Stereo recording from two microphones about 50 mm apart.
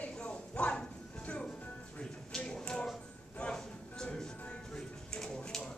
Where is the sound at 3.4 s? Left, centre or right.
Centre.